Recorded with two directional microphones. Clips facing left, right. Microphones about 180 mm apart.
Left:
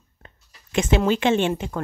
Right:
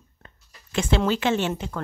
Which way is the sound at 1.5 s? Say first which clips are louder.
Left 3 dB; 10° left (ahead or behind).